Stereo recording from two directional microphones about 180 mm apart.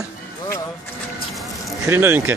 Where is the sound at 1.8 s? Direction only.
10° right (ahead or behind).